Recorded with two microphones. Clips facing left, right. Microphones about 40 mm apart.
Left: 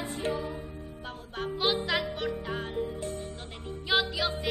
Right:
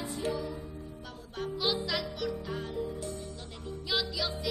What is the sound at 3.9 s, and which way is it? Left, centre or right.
Music, left.